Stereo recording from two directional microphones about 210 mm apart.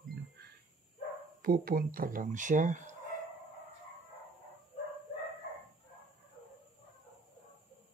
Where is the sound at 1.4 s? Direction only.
45° right (ahead or behind).